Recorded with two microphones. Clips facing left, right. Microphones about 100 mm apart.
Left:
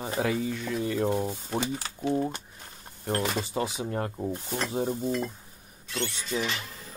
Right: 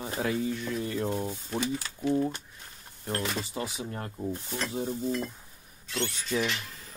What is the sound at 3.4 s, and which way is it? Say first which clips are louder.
Speech: left 4 dB; 30° left (ahead or behind).